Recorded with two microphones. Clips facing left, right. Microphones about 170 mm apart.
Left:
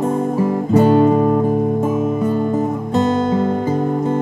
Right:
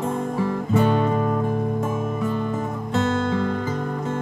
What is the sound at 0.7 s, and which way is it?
Music, 35° left (ahead or behind).